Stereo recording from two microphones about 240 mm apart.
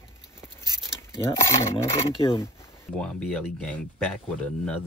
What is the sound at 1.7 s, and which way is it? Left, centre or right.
Speech, centre.